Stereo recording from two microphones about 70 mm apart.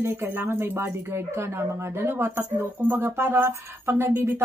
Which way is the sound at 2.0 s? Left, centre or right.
Right.